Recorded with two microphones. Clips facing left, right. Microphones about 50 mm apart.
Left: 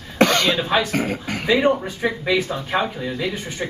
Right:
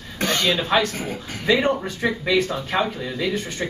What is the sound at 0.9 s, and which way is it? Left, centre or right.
Speech, left.